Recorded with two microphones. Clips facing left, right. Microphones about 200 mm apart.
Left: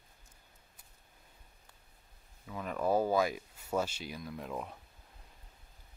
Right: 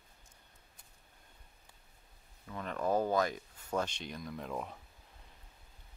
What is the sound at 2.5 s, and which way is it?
Speech, 5° left (ahead or behind).